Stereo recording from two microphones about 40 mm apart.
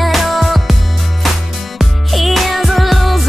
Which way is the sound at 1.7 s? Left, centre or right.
Centre.